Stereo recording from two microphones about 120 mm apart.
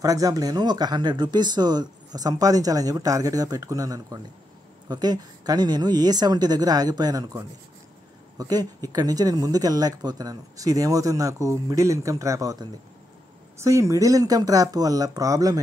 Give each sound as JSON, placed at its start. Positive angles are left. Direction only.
{"t": 0.0, "sound": "speech", "side_deg": -30}